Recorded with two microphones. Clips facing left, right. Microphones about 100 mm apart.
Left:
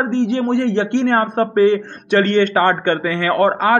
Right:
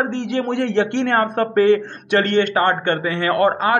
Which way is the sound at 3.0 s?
35° right (ahead or behind).